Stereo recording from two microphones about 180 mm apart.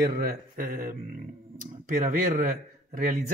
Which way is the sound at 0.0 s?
60° right (ahead or behind).